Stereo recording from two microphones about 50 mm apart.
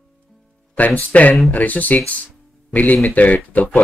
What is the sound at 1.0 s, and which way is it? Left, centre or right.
Speech, left.